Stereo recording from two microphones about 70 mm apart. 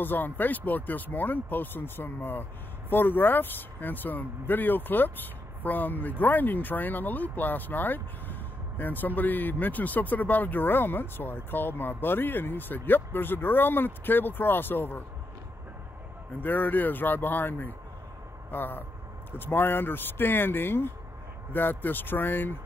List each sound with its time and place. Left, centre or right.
0.0 s speech: left
16.3 s speech: left